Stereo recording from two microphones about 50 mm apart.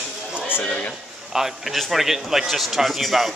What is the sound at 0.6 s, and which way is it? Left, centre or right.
Speech, left.